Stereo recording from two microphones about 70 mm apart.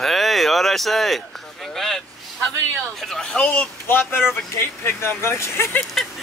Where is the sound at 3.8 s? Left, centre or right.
Left.